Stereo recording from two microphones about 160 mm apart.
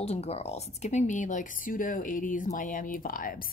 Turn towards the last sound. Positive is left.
turn(degrees=60)  # may be behind; listen again after turning